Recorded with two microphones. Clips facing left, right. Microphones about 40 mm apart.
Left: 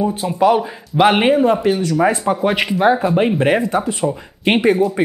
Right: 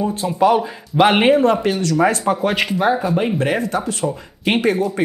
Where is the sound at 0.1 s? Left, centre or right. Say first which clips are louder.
Left 1 dB; centre.